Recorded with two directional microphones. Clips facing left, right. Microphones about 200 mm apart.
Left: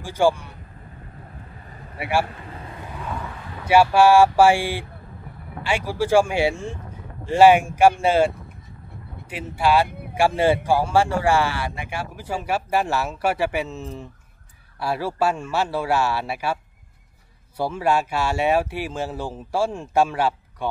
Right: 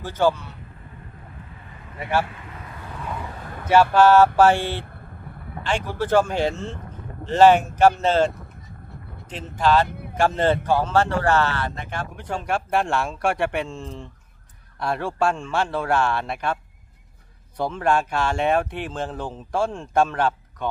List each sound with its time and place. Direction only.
0.0 s speech: 10° left (ahead or behind)
2.0 s a man's voice: 10° left (ahead or behind)
2.4 s a sound: 30° left (ahead or behind)
3.6 s speech: 10° left (ahead or behind)
9.3 s speech: 10° left (ahead or behind)
17.6 s speech: 10° left (ahead or behind)